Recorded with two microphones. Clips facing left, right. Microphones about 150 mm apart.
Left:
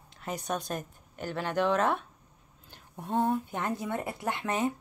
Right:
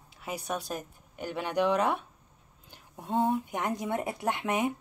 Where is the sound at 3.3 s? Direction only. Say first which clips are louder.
Even; 15° right (ahead or behind).